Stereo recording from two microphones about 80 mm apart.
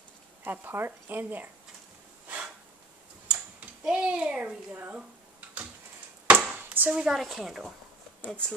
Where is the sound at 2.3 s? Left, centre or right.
Centre.